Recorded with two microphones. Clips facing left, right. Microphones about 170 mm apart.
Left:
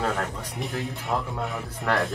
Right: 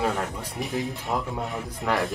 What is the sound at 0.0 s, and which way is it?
Speech, 10° right (ahead or behind).